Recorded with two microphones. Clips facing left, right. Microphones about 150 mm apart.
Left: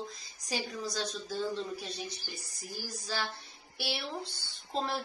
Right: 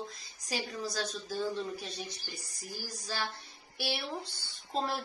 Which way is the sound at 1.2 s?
15° right (ahead or behind).